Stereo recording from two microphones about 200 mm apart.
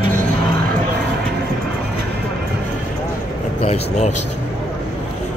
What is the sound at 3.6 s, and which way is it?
Speech, 35° left (ahead or behind).